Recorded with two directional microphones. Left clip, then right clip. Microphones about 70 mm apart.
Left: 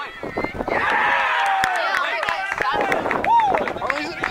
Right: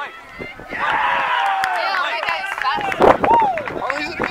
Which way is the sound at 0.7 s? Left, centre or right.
Left.